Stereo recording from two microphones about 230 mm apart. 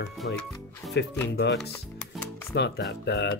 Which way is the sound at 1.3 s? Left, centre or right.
Left.